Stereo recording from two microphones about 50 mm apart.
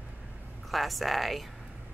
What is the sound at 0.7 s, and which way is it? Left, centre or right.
Speech, centre.